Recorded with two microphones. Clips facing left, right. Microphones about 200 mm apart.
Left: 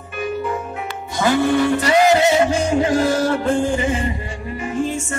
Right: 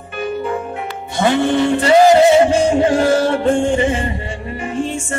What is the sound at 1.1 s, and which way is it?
Music, 25° right (ahead or behind).